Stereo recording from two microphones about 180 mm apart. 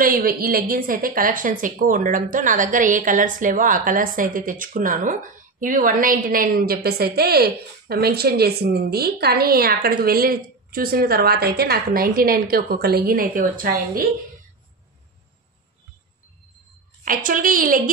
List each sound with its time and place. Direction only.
0.0 s a woman's voice: 55° right (ahead or behind)
17.0 s a woman's voice: 50° right (ahead or behind)